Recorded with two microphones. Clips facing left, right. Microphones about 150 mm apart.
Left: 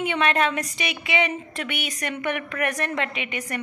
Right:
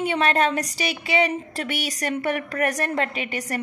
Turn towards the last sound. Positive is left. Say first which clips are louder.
# right 2 dB
turn(degrees=-35)  # may be behind; listen again after turning